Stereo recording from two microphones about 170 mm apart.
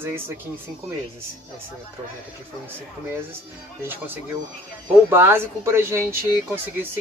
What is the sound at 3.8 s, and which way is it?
Speech, 10° right (ahead or behind).